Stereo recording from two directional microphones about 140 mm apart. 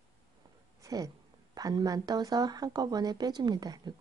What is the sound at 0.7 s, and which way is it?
A woman's voice, 25° right (ahead or behind).